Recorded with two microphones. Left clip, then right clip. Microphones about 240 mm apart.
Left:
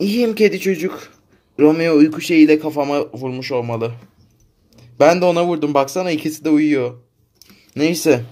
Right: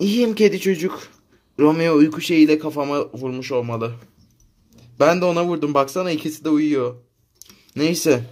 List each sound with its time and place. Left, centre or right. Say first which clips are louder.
0.0 s a man's voice: left 2 dB; centre